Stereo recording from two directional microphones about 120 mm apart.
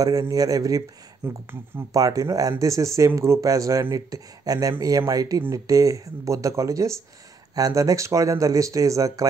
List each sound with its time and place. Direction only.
0.0 s speech: 30° right (ahead or behind)